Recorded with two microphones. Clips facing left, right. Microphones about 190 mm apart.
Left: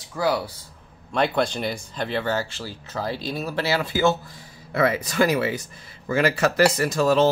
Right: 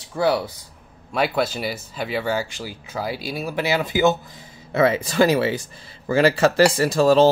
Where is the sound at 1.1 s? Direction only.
5° right (ahead or behind).